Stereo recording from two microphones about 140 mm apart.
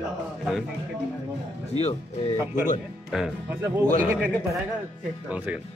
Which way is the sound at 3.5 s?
15° right (ahead or behind).